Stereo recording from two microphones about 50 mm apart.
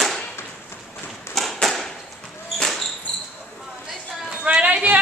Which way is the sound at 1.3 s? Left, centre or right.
Centre.